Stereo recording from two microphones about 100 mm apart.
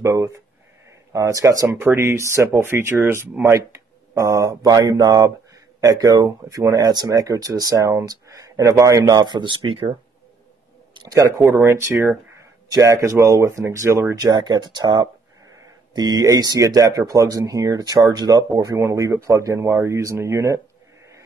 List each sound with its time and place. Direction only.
0.0 s speech: 35° right (ahead or behind); by 9.9 s 60° right (ahead or behind)
11.1 s speech: 30° right (ahead or behind)
14.2 s speech: 40° right (ahead or behind)